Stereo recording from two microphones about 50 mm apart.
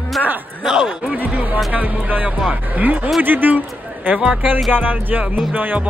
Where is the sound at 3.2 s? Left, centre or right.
Right.